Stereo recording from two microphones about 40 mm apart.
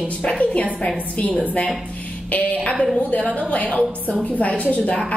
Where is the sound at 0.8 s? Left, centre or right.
Left.